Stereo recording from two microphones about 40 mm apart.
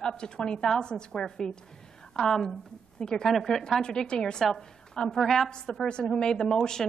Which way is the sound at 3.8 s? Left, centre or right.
Centre.